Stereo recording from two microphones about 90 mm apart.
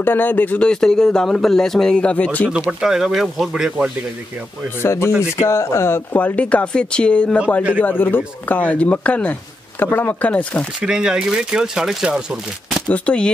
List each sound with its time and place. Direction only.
0.0 s speech: 20° left (ahead or behind)
2.5 s speech: 10° right (ahead or behind)
4.8 s speech: 30° left (ahead or behind)
10.8 s speech: 10° right (ahead or behind)
12.8 s speech: 15° left (ahead or behind)